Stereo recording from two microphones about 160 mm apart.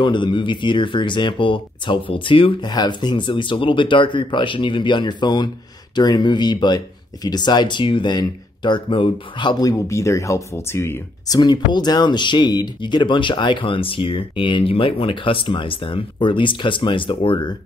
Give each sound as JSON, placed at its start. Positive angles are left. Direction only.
{"t": 0.0, "sound": "speech", "side_deg": 30}